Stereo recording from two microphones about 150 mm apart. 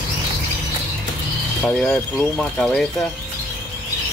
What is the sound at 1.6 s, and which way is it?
Speech, 5° left (ahead or behind).